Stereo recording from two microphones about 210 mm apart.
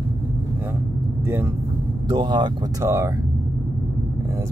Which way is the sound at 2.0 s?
20° right (ahead or behind).